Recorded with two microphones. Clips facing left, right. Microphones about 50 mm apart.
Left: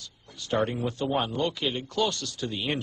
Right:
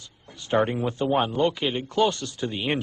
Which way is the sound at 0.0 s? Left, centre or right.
Right.